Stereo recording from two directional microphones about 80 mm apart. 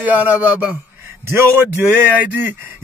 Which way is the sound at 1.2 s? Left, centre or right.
Right.